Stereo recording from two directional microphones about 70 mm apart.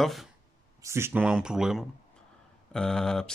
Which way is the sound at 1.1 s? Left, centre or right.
Centre.